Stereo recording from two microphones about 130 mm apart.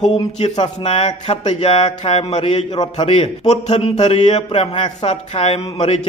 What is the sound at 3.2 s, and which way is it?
A man's voice, 60° left (ahead or behind).